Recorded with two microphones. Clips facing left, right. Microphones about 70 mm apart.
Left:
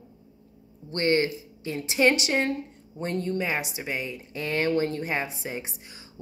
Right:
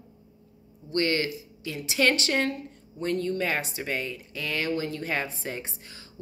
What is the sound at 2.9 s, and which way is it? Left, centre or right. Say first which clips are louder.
Speech: right 1 dB; left.